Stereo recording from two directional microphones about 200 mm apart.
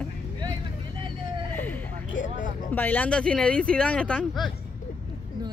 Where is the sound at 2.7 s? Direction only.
10° left (ahead or behind).